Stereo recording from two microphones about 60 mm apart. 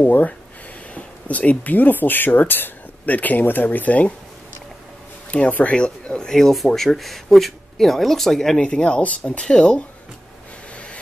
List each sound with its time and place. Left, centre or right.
0.0 s speech: left
5.3 s speech: left